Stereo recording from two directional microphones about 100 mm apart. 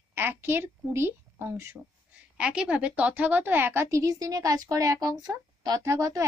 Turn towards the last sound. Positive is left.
turn(degrees=-30)  # may be behind; listen again after turning